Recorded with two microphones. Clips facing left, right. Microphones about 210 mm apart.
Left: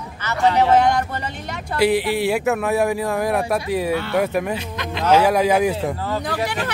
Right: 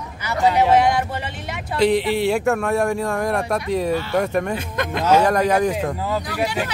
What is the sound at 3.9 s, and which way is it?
Speech, 60° left (ahead or behind).